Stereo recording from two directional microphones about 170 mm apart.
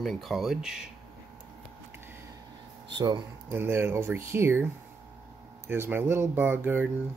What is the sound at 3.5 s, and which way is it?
Speech, 15° right (ahead or behind).